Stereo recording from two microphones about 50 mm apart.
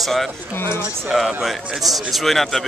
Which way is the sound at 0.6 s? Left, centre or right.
Left.